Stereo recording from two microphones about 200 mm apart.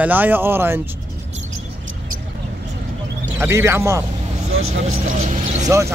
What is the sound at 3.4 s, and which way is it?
Speech, 10° right (ahead or behind).